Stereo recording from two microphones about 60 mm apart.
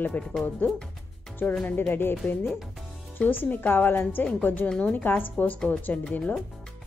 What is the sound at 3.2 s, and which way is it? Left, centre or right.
A woman's voice, left.